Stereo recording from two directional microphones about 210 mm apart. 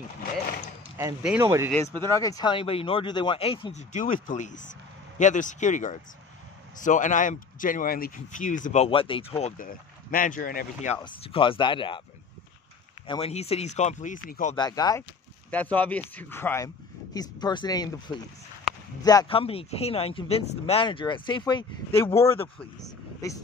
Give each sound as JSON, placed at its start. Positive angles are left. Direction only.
{"t": 0.9, "sound": "speech", "side_deg": -10}
{"t": 1.7, "sound": "speech", "side_deg": 10}
{"t": 9.6, "sound": "speech", "side_deg": 40}
{"t": 11.0, "sound": "speech", "side_deg": 25}
{"t": 13.0, "sound": "speech", "side_deg": 25}
{"t": 14.5, "sound": "speech", "side_deg": 20}
{"t": 15.5, "sound": "speech", "side_deg": 5}